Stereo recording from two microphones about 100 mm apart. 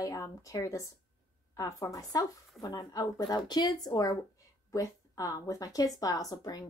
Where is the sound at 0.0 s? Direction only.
35° left (ahead or behind).